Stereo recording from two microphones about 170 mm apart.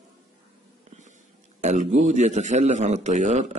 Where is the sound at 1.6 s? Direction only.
45° right (ahead or behind).